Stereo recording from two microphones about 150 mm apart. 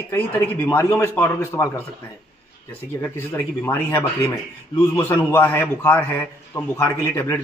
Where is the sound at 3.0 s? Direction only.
15° left (ahead or behind).